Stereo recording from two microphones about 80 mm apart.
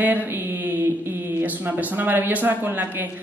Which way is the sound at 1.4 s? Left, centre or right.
Right.